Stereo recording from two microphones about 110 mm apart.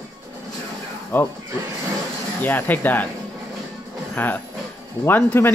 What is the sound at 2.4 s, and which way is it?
Speech, 15° left (ahead or behind).